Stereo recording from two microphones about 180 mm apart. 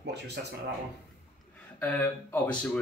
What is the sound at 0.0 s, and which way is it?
Speech, 70° right (ahead or behind).